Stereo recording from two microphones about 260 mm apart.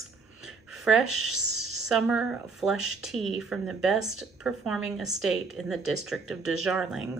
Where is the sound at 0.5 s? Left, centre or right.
Left.